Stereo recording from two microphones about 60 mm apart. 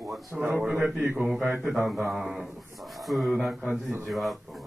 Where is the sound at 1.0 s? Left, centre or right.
Right.